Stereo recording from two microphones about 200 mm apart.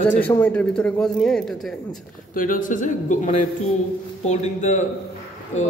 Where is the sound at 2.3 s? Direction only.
40° left (ahead or behind).